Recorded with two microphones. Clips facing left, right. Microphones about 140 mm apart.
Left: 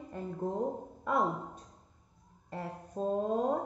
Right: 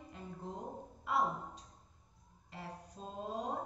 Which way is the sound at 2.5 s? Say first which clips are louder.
Left 8 dB; 55° left (ahead or behind).